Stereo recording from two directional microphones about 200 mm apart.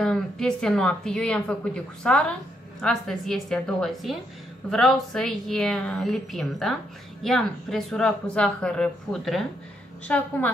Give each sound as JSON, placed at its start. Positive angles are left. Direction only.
{"t": 0.0, "sound": "a woman's voice", "side_deg": 5}